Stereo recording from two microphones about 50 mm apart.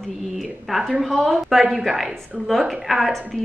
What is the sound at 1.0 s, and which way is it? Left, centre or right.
A woman's voice, centre.